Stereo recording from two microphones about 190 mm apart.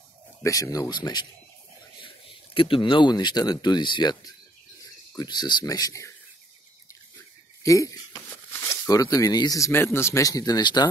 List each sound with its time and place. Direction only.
0.4 s speech: 15° left (ahead or behind)
7.6 s speech: 15° left (ahead or behind)